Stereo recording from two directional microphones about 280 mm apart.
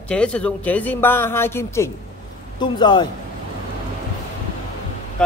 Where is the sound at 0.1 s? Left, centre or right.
Centre.